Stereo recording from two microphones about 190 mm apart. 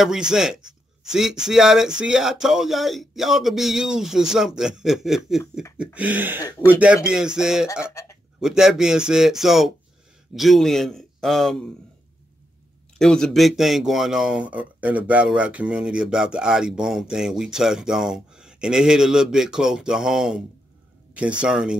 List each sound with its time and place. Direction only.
0.0 s speech: 5° right (ahead or behind)
5.9 s a sound: 10° right (ahead or behind)
7.1 s speech: 5° right (ahead or behind)
7.9 s speech: 15° left (ahead or behind)
8.4 s speech: 5° right (ahead or behind)
13.0 s speech: 5° left (ahead or behind)